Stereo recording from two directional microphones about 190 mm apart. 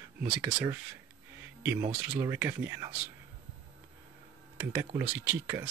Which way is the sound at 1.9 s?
10° right (ahead or behind).